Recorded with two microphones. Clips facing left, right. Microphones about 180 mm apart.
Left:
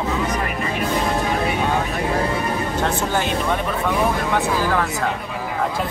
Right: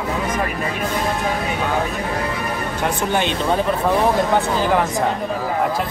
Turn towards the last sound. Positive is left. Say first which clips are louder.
# right 2 dB
turn(degrees=-20)  # may be behind; listen again after turning